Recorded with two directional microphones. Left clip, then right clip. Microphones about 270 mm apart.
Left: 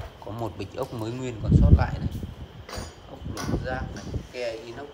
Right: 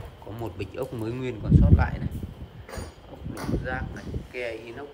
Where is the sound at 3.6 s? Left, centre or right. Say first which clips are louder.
Even; centre.